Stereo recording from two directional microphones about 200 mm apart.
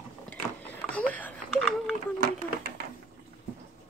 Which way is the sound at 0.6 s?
5° left (ahead or behind).